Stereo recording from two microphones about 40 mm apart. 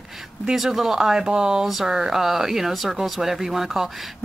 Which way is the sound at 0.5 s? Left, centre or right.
Centre.